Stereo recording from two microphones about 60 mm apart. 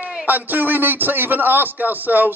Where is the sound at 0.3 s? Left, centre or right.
Right.